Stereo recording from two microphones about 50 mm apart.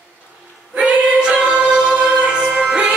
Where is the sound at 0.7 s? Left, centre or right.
Right.